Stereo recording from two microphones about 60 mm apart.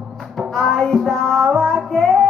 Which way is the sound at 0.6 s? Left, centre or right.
Centre.